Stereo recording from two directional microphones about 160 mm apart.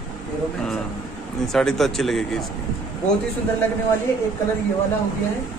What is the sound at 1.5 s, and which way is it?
Speech, centre (ahead or behind).